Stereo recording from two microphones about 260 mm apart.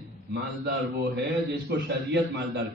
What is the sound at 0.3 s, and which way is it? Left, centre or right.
Speech, right.